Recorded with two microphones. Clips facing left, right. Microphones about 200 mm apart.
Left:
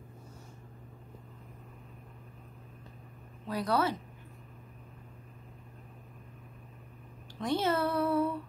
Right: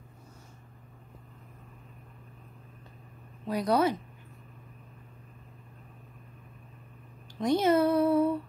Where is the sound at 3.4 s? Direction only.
15° right (ahead or behind).